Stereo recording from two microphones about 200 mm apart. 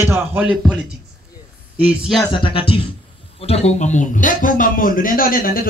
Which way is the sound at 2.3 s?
25° left (ahead or behind).